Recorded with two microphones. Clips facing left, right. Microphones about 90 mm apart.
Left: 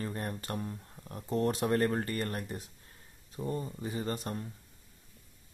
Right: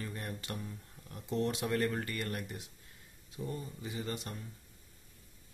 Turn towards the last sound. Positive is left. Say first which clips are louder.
# left 5 dB
turn(degrees=40)  # may be behind; listen again after turning